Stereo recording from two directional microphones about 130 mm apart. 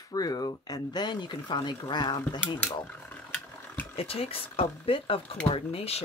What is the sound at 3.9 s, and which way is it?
Speech, 50° left (ahead or behind).